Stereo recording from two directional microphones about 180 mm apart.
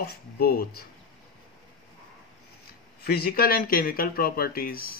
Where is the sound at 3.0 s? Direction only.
60° left (ahead or behind).